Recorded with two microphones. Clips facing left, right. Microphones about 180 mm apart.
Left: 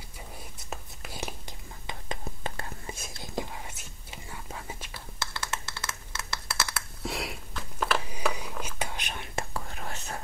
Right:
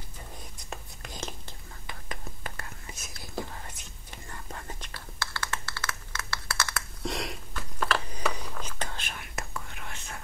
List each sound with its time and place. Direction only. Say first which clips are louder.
0.6 s whispering: left 1 dB; 5° left (ahead or behind)
1.9 s whispering: left 4 dB; 25° left (ahead or behind)
3.3 s whispering: left 1 dB; 10° left (ahead or behind)
5.3 s a sound: even; 20° left (ahead or behind); by 10.2 s 40° left (ahead or behind)